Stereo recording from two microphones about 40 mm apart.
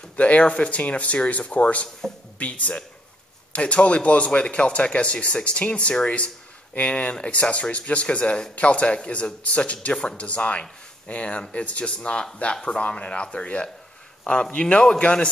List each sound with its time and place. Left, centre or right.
0.1 s speech: left